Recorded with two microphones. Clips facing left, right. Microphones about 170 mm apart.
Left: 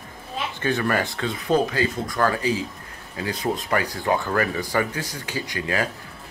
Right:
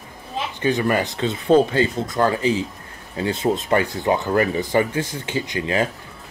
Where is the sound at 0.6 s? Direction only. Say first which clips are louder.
Right 3 dB; 15° right (ahead or behind).